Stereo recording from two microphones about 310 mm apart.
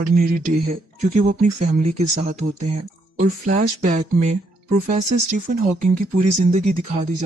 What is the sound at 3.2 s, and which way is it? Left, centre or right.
Speech, right.